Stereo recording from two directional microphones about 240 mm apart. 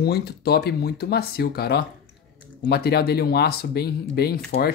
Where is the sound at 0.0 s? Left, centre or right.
Left.